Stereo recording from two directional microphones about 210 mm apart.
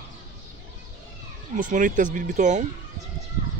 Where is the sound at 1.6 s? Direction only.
40° right (ahead or behind).